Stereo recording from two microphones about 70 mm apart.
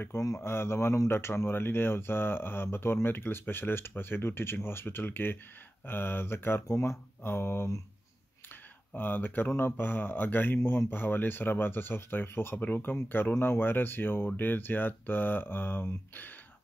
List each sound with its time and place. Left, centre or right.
0.2 s speech: left
8.9 s speech: left